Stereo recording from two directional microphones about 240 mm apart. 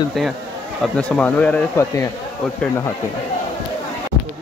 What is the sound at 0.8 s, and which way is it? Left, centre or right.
Speech, centre.